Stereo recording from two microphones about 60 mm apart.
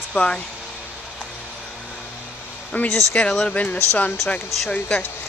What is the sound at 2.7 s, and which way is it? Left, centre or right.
Speech, left.